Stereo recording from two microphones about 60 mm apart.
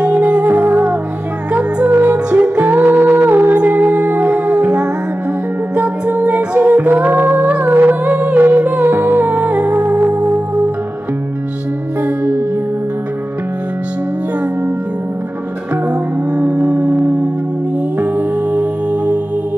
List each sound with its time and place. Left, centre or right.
0.0 s music: right
2.6 s music: right
3.5 s music: right
12.0 s music: right
15.9 s music: centre